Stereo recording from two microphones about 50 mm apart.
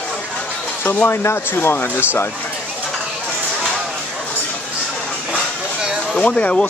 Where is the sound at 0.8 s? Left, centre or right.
Left.